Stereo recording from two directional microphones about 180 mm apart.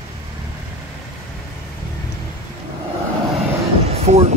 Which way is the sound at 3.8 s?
35° right (ahead or behind).